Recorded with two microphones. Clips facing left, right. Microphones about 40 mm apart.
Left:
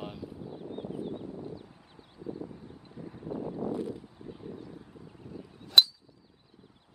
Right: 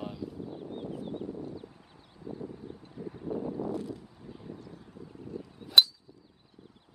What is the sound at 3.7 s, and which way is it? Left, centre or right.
Vehicle, centre.